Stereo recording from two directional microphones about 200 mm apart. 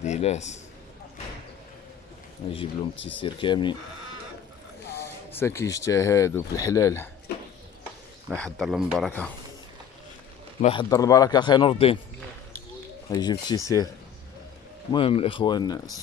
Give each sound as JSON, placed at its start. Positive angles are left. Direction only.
{"t": 0.0, "sound": "a man's voice", "side_deg": 35}
{"t": 2.5, "sound": "speech", "side_deg": 25}
{"t": 5.3, "sound": "speech", "side_deg": 15}
{"t": 7.3, "sound": "a sound", "side_deg": 55}
{"t": 8.4, "sound": "speech", "side_deg": 0}
{"t": 10.6, "sound": "speech", "side_deg": 25}
{"t": 13.1, "sound": "speech", "side_deg": 20}
{"t": 14.9, "sound": "speech", "side_deg": 25}